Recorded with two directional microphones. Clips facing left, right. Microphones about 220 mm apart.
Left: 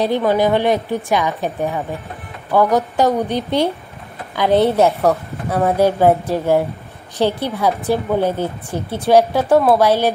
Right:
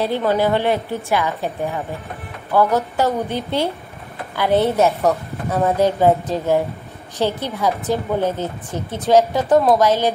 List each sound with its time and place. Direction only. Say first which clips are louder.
0.0 s a woman's voice: left 2 dB; 15° left (ahead or behind)
2.5 s a woman's voice: left 2 dB; 15° left (ahead or behind)